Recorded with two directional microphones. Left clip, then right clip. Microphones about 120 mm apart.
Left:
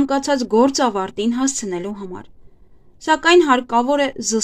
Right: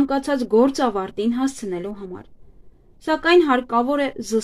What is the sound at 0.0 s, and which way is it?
A woman's voice, 40° left (ahead or behind).